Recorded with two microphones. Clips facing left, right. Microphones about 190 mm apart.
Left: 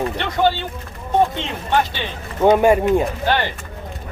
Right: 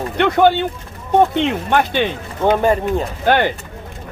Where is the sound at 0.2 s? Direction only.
55° right (ahead or behind).